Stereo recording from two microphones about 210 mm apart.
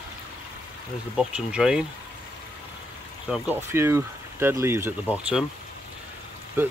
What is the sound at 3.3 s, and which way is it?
Speech, 10° right (ahead or behind).